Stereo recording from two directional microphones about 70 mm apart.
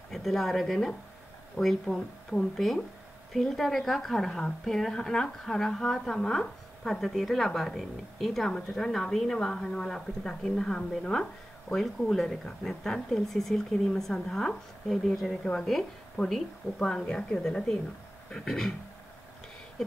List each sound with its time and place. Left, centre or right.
0.1 s a woman's voice: centre